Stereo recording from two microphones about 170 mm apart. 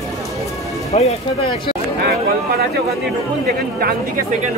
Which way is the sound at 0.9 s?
40° left (ahead or behind).